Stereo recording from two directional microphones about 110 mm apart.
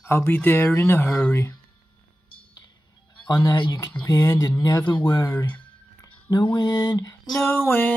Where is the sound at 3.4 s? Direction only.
40° left (ahead or behind).